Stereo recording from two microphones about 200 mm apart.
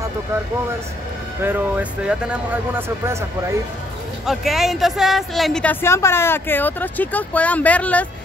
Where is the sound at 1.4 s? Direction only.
10° right (ahead or behind).